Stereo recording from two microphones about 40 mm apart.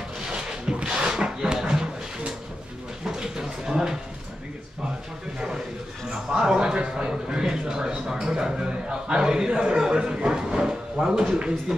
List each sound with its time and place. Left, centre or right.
0.3 s a sound: right
6.3 s a man's voice: centre
11.2 s speech: right